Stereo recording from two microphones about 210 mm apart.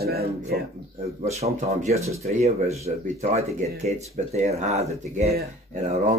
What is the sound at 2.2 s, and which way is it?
Speech, 30° right (ahead or behind).